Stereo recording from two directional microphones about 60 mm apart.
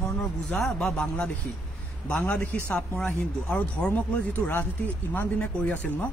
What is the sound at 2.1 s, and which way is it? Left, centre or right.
Speech, left.